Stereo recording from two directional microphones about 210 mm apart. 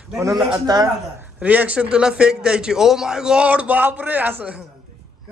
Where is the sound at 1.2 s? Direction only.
5° right (ahead or behind).